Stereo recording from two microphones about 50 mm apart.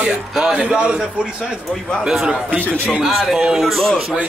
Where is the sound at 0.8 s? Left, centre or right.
Right.